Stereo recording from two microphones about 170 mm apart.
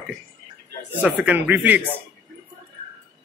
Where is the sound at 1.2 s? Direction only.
10° right (ahead or behind).